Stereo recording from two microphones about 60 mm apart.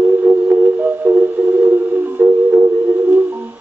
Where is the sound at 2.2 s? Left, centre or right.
Right.